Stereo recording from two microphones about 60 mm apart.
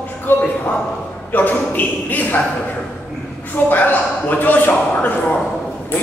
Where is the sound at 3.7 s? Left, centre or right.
Left.